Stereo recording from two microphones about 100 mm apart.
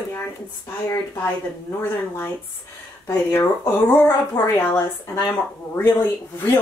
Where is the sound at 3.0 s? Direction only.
30° left (ahead or behind).